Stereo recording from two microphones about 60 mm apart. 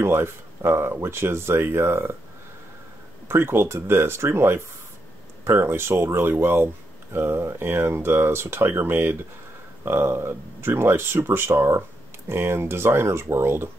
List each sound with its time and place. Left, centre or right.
0.0 s speech: right
3.3 s speech: right